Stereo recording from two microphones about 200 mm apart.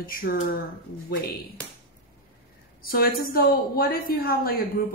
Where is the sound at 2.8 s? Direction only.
45° left (ahead or behind).